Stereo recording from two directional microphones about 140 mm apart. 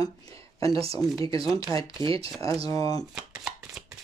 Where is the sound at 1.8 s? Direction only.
40° right (ahead or behind).